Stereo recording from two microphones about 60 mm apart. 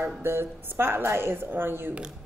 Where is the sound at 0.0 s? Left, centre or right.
Right.